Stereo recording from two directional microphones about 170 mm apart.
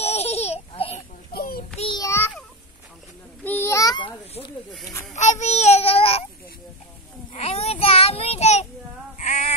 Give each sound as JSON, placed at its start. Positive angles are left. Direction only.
{"t": 0.0, "sound": "babbling", "side_deg": 40}
{"t": 1.3, "sound": "child singing", "side_deg": 60}
{"t": 1.8, "sound": "child singing", "side_deg": 30}
{"t": 2.0, "sound": "a sound", "side_deg": 10}
{"t": 3.4, "sound": "a sound", "side_deg": 10}
{"t": 5.1, "sound": "child singing", "side_deg": 45}
{"t": 7.3, "sound": "child singing", "side_deg": 35}
{"t": 9.2, "sound": "female singing", "side_deg": 45}